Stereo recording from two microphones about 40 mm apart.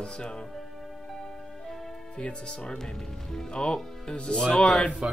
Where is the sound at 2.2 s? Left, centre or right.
Left.